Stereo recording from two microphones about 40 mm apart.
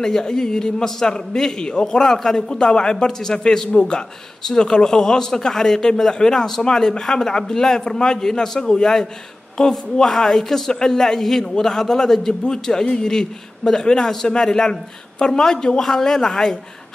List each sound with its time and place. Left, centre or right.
0.0 s a man's voice: centre